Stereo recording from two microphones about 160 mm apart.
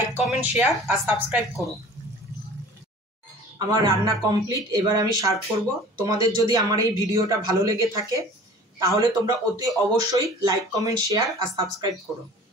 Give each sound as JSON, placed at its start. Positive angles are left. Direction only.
{"t": 0.2, "sound": "speech", "side_deg": -5}
{"t": 3.5, "sound": "speech", "side_deg": -25}